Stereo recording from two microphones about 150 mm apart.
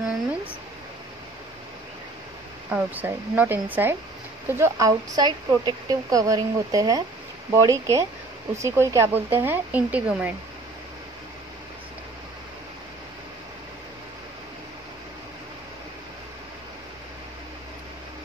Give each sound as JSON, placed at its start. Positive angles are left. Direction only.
{"t": 2.7, "sound": "speech", "side_deg": -10}